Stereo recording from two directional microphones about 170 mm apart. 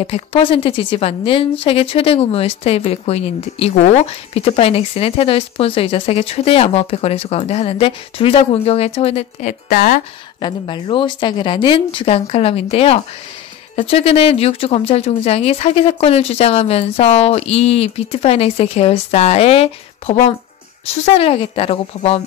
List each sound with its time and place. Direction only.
0.0 s a woman's voice: 35° left (ahead or behind)
9.7 s speech: 55° left (ahead or behind)
10.4 s a woman's voice: 30° left (ahead or behind)